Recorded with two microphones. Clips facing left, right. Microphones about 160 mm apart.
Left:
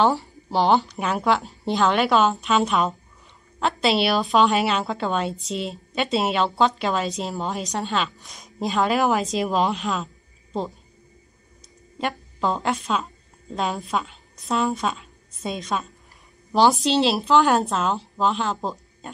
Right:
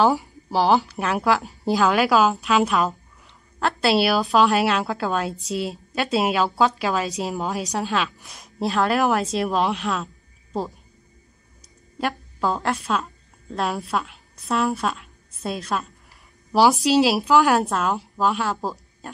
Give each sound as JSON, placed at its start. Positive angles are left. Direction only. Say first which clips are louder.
{"t": 0.1, "sound": "a woman's voice", "louder": "right 1 dB", "side_deg": -10}
{"t": 12.0, "sound": "a woman's voice", "louder": "right 1 dB", "side_deg": -5}